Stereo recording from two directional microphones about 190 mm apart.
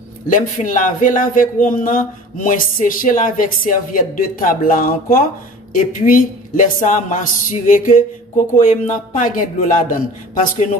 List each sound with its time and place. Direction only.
0.3 s a woman's voice: 45° left (ahead or behind)